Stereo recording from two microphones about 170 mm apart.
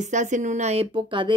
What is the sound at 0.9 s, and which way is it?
Speech, 30° right (ahead or behind).